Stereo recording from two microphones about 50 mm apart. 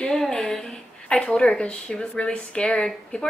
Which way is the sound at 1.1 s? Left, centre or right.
Left.